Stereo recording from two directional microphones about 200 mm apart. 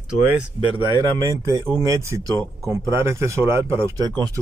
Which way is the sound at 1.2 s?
15° right (ahead or behind).